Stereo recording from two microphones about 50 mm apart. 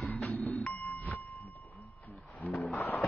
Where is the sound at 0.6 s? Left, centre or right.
Left.